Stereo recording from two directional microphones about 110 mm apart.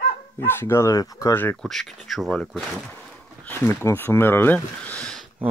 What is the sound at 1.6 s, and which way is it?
Speech, 5° left (ahead or behind).